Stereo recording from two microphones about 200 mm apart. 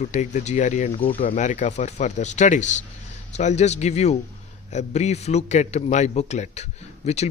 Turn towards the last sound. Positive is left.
turn(degrees=35)  # may be behind; listen again after turning